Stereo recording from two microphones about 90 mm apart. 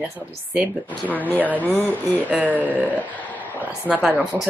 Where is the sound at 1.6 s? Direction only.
20° left (ahead or behind).